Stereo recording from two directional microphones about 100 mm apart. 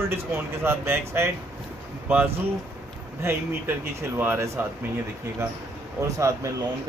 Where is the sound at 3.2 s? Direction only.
20° right (ahead or behind).